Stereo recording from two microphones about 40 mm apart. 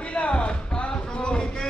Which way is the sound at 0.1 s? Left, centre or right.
Left.